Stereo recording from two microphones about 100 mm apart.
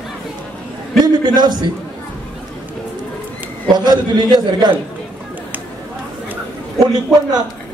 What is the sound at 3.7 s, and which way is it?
A man's voice, 45° right (ahead or behind).